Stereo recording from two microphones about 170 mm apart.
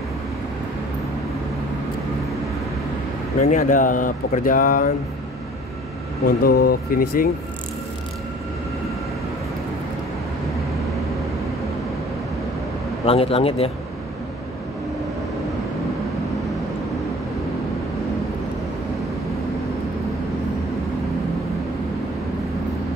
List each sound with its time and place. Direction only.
3.3 s speech: 45° left (ahead or behind)
6.2 s speech: 65° left (ahead or behind)
13.0 s speech: 35° left (ahead or behind)